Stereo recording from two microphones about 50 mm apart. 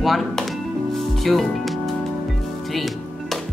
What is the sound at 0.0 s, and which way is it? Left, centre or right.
Music, centre.